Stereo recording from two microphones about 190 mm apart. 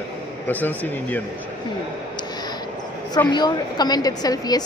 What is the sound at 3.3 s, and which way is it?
A woman's voice, 20° left (ahead or behind).